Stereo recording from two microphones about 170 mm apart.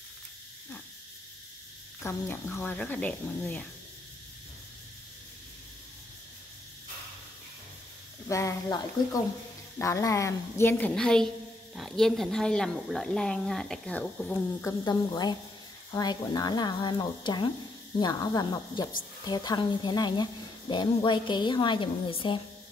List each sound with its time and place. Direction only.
2.0 s speech: 15° left (ahead or behind)
8.3 s a woman's voice: 20° left (ahead or behind)
14.6 s a woman's voice: 20° left (ahead or behind)